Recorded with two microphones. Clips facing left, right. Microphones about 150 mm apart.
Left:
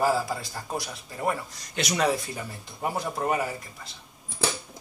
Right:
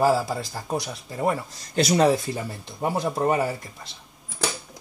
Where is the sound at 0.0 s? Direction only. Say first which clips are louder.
Right 4 dB; 30° right (ahead or behind).